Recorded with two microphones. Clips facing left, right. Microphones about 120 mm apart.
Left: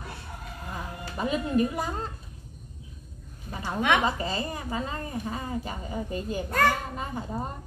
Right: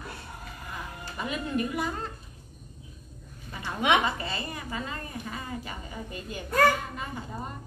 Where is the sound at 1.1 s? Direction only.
35° left (ahead or behind).